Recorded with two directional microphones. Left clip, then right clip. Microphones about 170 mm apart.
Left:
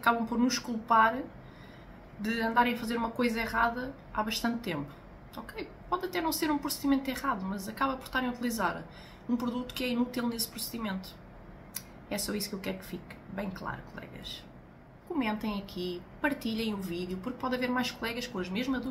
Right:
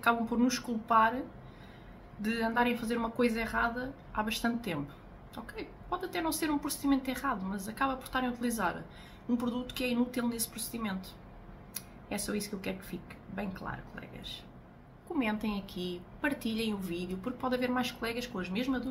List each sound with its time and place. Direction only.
0.0 s a woman's voice: 10° right (ahead or behind)
2.2 s a woman's voice: 10° right (ahead or behind)